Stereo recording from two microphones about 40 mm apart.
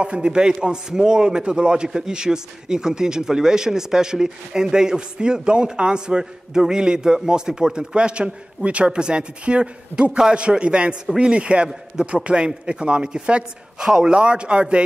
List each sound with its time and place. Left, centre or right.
0.0 s a man's voice: right